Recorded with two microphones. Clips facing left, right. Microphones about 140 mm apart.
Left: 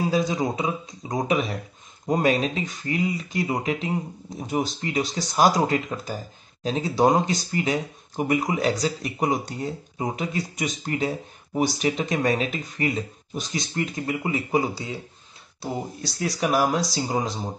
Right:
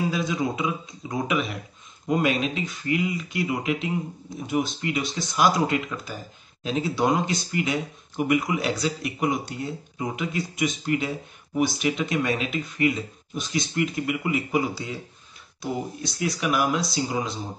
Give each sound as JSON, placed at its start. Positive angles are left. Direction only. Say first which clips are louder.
{"t": 0.1, "sound": "speech", "louder": "left 3 dB", "side_deg": 35}